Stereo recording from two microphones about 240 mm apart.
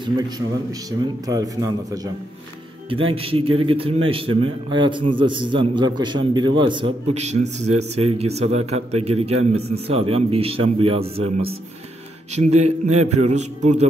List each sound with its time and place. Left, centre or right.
0.7 s a man's voice: centre
3.1 s a man's voice: right